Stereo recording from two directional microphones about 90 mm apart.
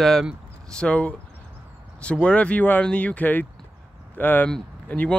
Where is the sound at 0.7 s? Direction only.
10° left (ahead or behind).